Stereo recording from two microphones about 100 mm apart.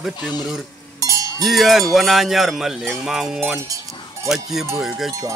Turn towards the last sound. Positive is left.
turn(degrees=-5)  # may be behind; listen again after turning